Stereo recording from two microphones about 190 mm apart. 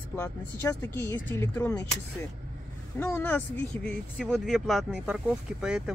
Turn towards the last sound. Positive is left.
turn(degrees=-5)  # may be behind; listen again after turning